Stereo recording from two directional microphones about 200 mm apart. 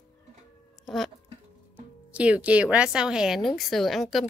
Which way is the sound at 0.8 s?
Centre (ahead or behind).